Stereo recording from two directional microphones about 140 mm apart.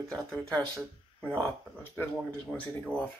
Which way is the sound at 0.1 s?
5° left (ahead or behind).